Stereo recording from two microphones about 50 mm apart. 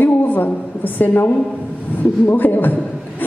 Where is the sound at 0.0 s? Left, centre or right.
Left.